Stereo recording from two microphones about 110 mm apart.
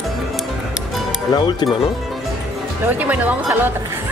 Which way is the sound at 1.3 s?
40° left (ahead or behind).